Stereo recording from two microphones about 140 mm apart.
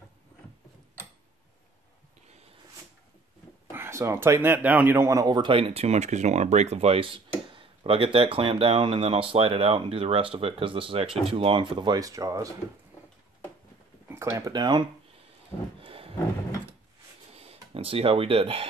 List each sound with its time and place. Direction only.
3.7 s a man's voice: 20° right (ahead or behind)
14.0 s speech: 15° right (ahead or behind)
15.8 s a sound: 40° right (ahead or behind)
17.3 s speech: 45° right (ahead or behind)